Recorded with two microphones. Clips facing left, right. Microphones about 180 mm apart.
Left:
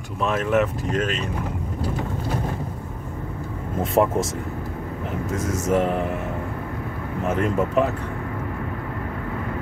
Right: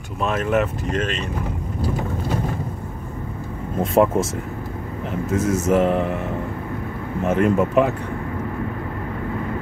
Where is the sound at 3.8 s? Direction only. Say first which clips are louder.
Right 3 dB; centre (ahead or behind).